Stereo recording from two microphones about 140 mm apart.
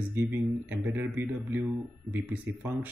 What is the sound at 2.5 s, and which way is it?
Speech, 15° right (ahead or behind).